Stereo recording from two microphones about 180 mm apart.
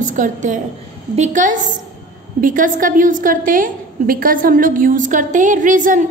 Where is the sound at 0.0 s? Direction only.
45° right (ahead or behind).